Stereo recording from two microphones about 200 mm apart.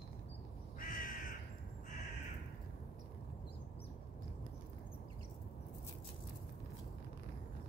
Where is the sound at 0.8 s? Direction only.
45° left (ahead or behind).